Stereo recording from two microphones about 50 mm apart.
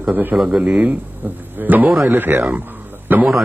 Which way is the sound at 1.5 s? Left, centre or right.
Right.